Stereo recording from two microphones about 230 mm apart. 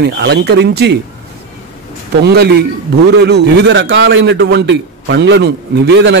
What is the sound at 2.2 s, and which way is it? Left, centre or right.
A man's voice, right.